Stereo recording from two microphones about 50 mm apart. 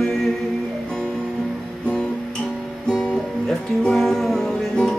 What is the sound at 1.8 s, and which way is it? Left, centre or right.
Guitar, left.